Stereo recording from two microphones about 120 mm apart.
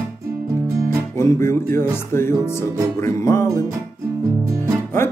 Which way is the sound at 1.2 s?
25° left (ahead or behind).